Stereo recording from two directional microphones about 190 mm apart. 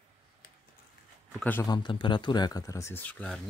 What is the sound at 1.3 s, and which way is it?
Speech, 10° left (ahead or behind).